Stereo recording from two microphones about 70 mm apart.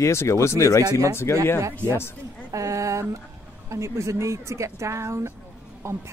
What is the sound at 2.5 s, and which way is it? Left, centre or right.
Speech, right.